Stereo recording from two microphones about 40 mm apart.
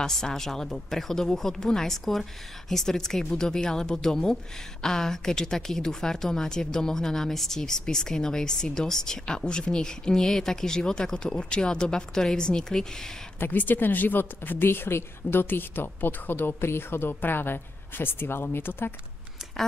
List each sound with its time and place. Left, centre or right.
0.0 s a woman's voice: centre
13.5 s speech: left
17.1 s speech: left